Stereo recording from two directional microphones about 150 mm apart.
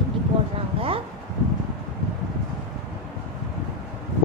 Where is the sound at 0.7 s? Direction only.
40° right (ahead or behind).